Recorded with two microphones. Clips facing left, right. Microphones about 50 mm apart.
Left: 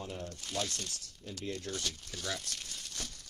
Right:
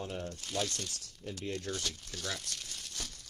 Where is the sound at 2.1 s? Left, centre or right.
Centre.